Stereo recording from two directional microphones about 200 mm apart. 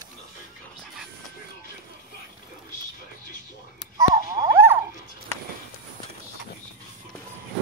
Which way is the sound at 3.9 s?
20° right (ahead or behind).